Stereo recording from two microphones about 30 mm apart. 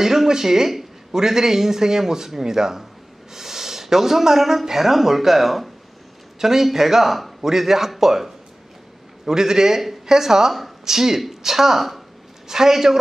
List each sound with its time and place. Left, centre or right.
0.0 s a man's voice: centre
9.3 s a man's voice: centre